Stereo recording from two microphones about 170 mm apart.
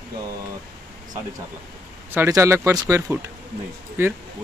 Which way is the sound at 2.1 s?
15° right (ahead or behind).